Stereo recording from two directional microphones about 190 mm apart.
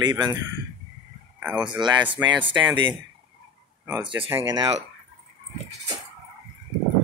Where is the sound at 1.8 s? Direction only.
25° right (ahead or behind).